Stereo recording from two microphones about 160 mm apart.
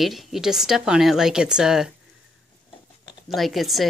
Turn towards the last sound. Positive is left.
turn(degrees=0)  # may be behind; listen again after turning